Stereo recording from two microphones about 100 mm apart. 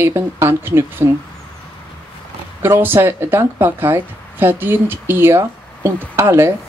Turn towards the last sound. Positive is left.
turn(degrees=-25)  # may be behind; listen again after turning